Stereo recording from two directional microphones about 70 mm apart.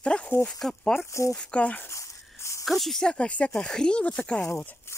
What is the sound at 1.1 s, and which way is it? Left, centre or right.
Speech, left.